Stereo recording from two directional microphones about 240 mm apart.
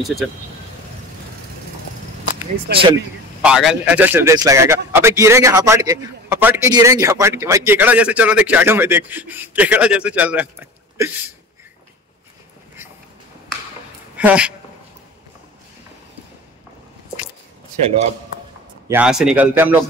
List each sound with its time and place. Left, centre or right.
0.0 s speech: centre
2.7 s speech: right
3.4 s a man's voice: centre
14.1 s speech: centre
18.9 s a man's voice: centre